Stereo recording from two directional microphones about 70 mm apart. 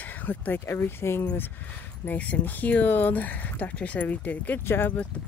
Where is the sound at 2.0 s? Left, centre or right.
Centre.